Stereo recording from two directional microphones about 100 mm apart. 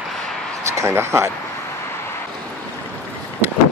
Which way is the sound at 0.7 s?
30° right (ahead or behind).